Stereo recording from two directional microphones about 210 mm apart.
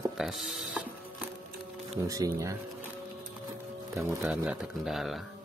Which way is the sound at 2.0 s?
15° right (ahead or behind).